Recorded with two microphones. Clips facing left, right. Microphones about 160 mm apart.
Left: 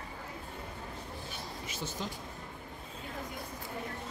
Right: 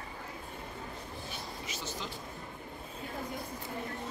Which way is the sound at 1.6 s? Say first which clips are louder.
Left 3 dB; 50° left (ahead or behind).